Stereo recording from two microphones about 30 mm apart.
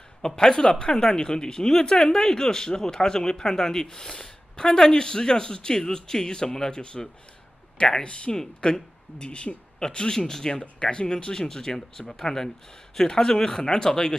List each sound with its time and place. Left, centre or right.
0.2 s speech: left
1.7 s speech: centre
8.0 s speech: left
9.8 s speech: left
10.8 s speech: left
13.6 s speech: left